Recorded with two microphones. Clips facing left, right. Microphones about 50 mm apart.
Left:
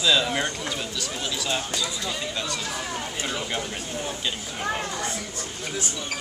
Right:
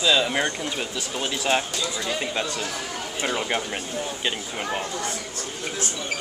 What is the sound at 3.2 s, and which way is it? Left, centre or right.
Speech, right.